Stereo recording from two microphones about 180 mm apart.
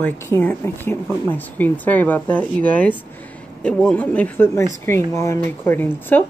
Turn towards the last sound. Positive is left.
turn(degrees=10)  # may be behind; listen again after turning